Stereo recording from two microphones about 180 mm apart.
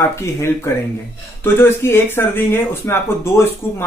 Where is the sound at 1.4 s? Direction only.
15° left (ahead or behind).